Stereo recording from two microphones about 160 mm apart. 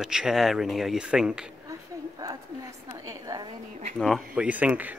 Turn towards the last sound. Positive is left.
turn(degrees=-10)  # may be behind; listen again after turning